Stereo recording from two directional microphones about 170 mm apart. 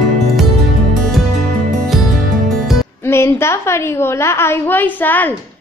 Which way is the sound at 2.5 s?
Centre (ahead or behind).